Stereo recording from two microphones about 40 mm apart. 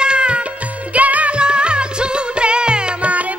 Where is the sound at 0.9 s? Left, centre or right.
Right.